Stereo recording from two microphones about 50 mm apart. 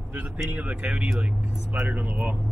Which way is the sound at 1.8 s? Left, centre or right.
Right.